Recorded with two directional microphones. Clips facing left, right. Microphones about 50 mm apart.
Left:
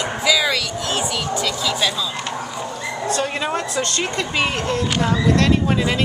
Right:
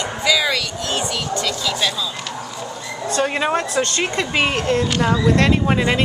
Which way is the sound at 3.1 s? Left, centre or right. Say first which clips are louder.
Right 4 dB; centre.